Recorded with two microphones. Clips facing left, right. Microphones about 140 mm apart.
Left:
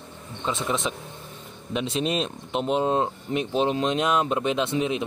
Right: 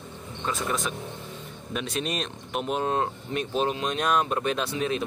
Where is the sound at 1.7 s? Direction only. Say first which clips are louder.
Left 4 dB; 25° left (ahead or behind).